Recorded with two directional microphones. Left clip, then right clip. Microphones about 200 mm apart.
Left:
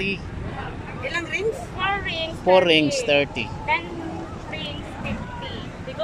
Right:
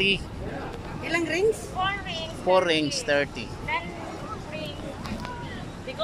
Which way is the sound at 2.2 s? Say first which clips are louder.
Left 5 dB; 10° left (ahead or behind).